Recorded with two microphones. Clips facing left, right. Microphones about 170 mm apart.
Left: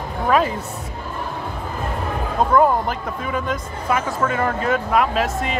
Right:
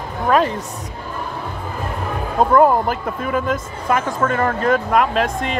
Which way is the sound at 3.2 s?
50° right (ahead or behind).